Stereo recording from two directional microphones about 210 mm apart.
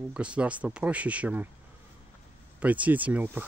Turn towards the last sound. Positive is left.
turn(degrees=-10)  # may be behind; listen again after turning